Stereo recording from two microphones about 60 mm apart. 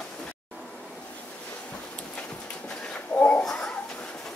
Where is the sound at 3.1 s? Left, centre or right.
Left.